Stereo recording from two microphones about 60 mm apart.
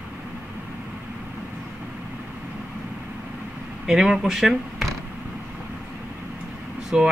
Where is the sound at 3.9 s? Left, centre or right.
Centre.